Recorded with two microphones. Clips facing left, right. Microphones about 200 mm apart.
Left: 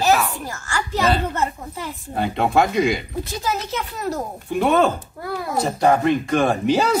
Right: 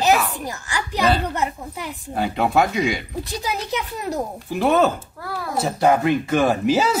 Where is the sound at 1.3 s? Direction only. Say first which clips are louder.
Even; 15° right (ahead or behind).